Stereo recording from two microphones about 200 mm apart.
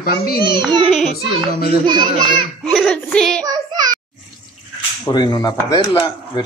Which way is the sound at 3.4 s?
20° right (ahead or behind).